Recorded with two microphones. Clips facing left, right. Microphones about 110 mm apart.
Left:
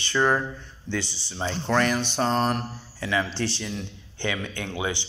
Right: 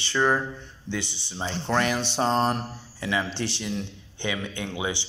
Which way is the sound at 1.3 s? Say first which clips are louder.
Left 2 dB; 20° right (ahead or behind).